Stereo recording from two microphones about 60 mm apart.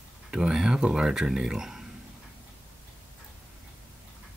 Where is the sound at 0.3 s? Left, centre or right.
Centre.